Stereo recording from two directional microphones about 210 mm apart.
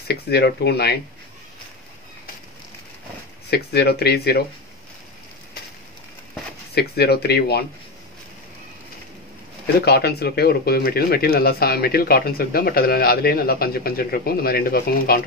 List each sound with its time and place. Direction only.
0.1 s speech: 50° left (ahead or behind)
3.4 s speech: 50° left (ahead or behind)
6.7 s speech: 50° left (ahead or behind)
9.8 s speech: 50° left (ahead or behind)